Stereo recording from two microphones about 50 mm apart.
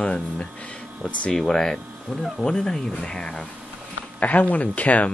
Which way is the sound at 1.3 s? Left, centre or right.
Centre.